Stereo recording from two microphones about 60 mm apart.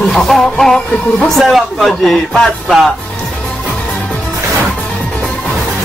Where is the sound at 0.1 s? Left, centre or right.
Centre.